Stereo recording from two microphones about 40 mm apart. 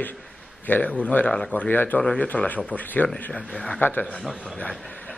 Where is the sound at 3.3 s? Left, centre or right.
Left.